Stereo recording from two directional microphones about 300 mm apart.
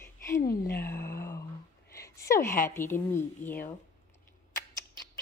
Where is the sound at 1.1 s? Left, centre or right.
Centre.